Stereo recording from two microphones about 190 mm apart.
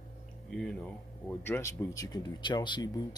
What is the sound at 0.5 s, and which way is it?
Speech, 5° left (ahead or behind).